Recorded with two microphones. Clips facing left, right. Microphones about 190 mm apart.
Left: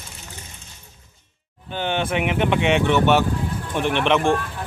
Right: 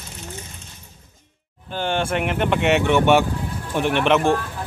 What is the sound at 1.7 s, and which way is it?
Speech, centre (ahead or behind).